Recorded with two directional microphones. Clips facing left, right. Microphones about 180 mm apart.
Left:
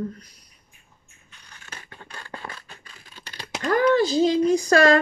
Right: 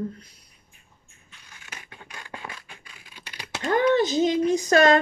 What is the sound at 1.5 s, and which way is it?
Scratch, 15° right (ahead or behind).